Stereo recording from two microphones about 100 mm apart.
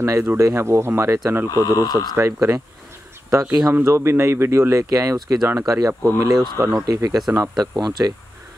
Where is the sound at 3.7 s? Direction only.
25° right (ahead or behind).